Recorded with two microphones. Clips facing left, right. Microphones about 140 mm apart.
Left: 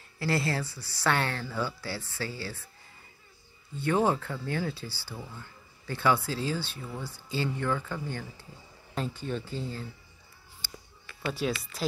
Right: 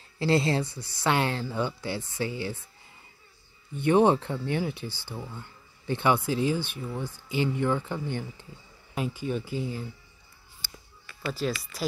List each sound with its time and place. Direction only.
0.2 s speech: 20° right (ahead or behind)
3.7 s speech: 20° right (ahead or behind)
11.2 s speech: centre (ahead or behind)